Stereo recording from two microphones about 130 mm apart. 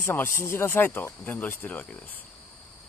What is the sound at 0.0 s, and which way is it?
Speech, 15° left (ahead or behind).